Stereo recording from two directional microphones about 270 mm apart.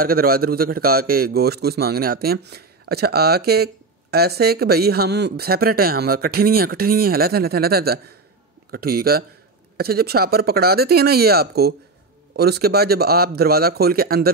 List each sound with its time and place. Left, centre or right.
0.0 s a man's voice: right